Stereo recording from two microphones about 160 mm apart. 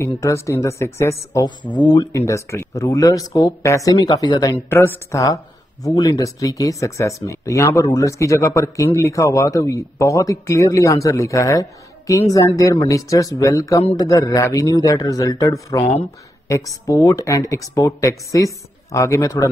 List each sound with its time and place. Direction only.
0.0 s speech: 20° left (ahead or behind)
4.6 s speech: 15° left (ahead or behind)